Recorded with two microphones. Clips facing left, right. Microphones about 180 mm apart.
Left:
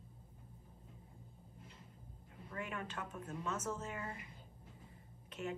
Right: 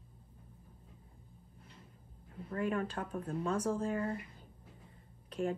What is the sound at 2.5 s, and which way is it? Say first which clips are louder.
Speech: right 10 dB; 45° right (ahead or behind).